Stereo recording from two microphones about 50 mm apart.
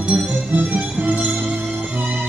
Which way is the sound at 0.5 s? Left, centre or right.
Right.